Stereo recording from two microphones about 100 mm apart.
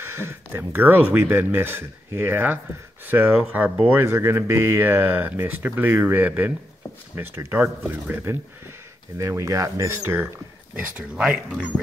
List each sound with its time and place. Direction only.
0.0 s speech: 25° right (ahead or behind)
4.0 s speech: 25° right (ahead or behind); by 11.6 s 10° right (ahead or behind)